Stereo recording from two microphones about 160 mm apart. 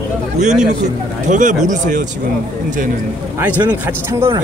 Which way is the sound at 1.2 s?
50° right (ahead or behind).